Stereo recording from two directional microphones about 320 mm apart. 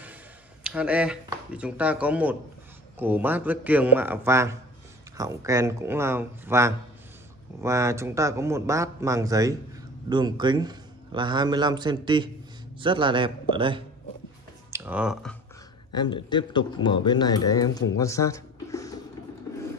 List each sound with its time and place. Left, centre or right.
0.7 s a man's voice: centre
15.9 s speech: centre
17.9 s music: centre
19.5 s a sound: centre